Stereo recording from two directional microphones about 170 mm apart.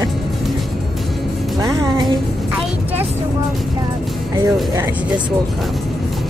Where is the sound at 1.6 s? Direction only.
20° right (ahead or behind).